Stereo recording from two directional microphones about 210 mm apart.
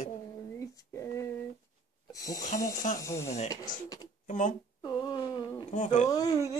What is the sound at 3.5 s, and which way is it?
Wail, 20° left (ahead or behind).